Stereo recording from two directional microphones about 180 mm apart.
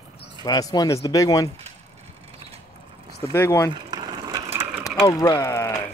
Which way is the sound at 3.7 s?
20° right (ahead or behind).